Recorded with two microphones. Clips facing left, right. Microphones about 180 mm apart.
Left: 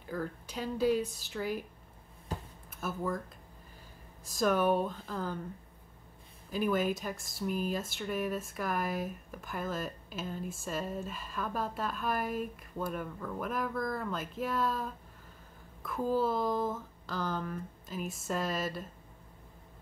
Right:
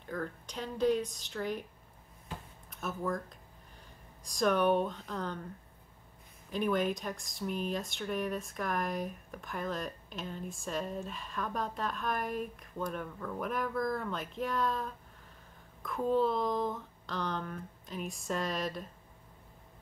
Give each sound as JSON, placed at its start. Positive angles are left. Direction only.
{"t": 0.0, "sound": "speech", "side_deg": 5}
{"t": 2.3, "sound": "a sound", "side_deg": 40}
{"t": 2.7, "sound": "speech", "side_deg": 5}
{"t": 4.2, "sound": "speech", "side_deg": 5}
{"t": 6.5, "sound": "speech", "side_deg": 5}